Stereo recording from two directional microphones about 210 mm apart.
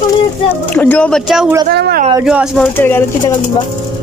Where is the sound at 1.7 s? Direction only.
50° right (ahead or behind).